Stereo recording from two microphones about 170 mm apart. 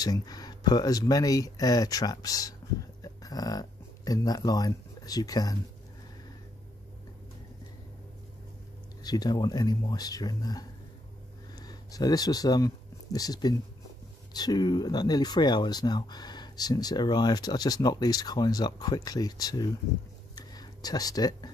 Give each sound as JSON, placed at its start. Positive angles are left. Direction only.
{"t": 0.0, "sound": "speech", "side_deg": 20}
{"t": 9.0, "sound": "speech", "side_deg": 25}
{"t": 20.3, "sound": "a sound", "side_deg": 25}